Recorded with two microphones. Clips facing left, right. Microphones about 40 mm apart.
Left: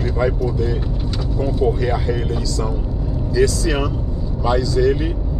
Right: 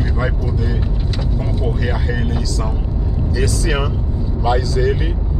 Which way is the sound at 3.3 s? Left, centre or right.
Right.